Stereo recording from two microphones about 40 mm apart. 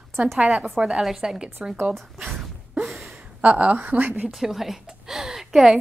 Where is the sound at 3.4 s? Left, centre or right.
Right.